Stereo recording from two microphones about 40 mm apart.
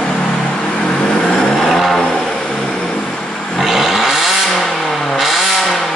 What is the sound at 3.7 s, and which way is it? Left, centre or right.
Vehicle, centre.